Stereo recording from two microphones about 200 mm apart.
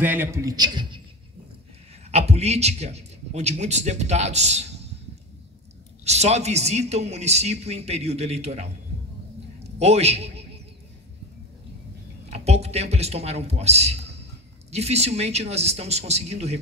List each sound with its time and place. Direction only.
0.0 s a man's voice: 10° right (ahead or behind)
2.0 s a man's voice: 30° right (ahead or behind)
6.0 s a man's voice: 35° right (ahead or behind)
12.3 s a man's voice: 30° right (ahead or behind)